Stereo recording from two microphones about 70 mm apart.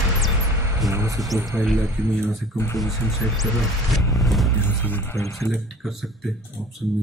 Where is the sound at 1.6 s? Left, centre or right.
Centre.